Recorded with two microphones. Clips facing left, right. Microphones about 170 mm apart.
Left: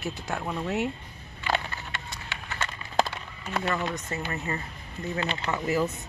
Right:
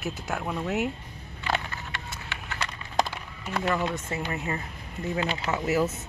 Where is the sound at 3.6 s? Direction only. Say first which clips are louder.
Right 3 dB; 5° right (ahead or behind).